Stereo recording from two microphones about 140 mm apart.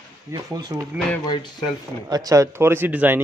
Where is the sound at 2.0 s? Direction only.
25° right (ahead or behind).